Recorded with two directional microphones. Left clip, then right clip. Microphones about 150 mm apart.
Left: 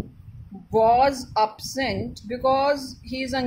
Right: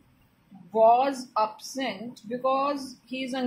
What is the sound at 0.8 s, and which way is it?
A woman's voice, 45° left (ahead or behind).